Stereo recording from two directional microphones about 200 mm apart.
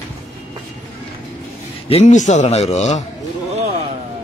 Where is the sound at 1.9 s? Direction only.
35° left (ahead or behind).